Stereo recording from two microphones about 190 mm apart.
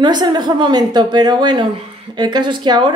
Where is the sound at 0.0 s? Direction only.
20° right (ahead or behind).